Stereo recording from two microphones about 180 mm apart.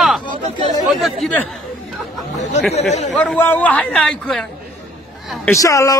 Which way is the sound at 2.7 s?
40° left (ahead or behind).